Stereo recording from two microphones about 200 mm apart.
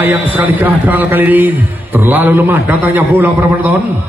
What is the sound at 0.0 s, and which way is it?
A man's voice, 10° right (ahead or behind).